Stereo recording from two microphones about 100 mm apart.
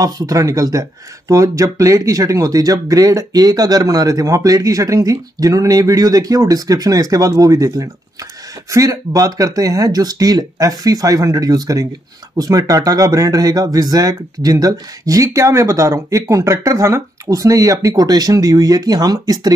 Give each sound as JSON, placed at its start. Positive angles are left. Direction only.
{"t": 0.0, "sound": "speech", "side_deg": -35}